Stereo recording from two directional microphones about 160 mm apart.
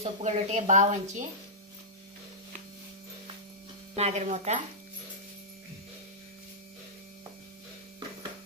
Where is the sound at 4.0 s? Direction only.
40° right (ahead or behind).